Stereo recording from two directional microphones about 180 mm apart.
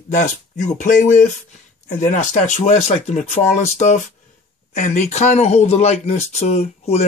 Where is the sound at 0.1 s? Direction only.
45° left (ahead or behind).